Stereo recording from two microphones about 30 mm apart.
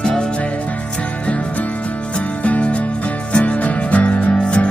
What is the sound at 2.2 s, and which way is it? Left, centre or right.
Music, left.